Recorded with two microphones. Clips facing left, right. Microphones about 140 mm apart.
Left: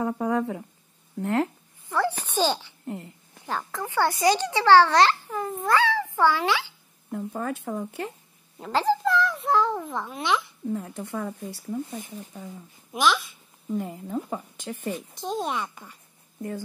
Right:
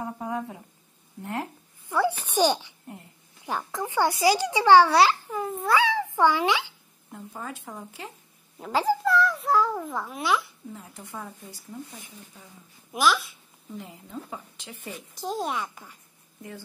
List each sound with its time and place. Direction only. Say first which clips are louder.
0.0 s speech: left 6 dB; 75° left (ahead or behind)
1.9 s a child's voice: right 1 dB; 10° right (ahead or behind)
7.1 s speech: left 8 dB; 55° left (ahead or behind)
9.0 s a child's voice: right 1 dB; centre (ahead or behind)
10.7 s speech: left 12 dB; 60° left (ahead or behind)
12.9 s speech: even; 5° right (ahead or behind)
13.7 s speech: left 9 dB; 50° left (ahead or behind)
15.1 s speech: right 2 dB; centre (ahead or behind)